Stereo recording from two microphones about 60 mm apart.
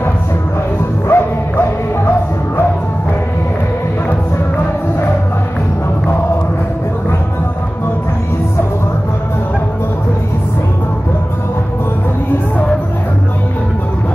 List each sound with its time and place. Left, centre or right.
1.0 s music: left